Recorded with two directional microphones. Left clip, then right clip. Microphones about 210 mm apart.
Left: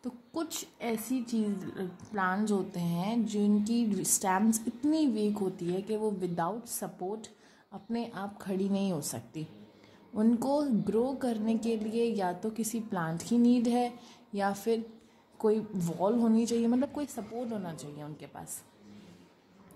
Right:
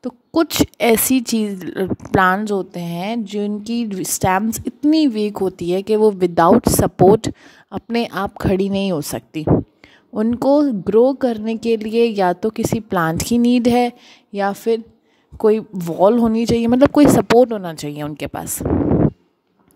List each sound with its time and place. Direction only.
0.0 s a woman's voice: 40° right (ahead or behind)